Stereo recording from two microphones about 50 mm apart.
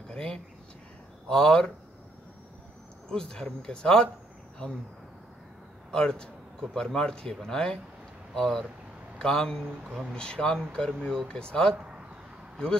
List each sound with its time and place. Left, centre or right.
0.1 s speech: centre
3.1 s speech: centre
5.9 s speech: centre